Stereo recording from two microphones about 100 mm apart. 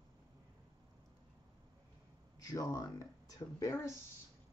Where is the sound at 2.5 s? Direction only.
35° left (ahead or behind).